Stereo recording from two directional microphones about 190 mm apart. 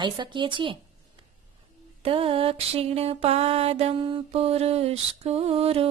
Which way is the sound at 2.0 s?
30° right (ahead or behind).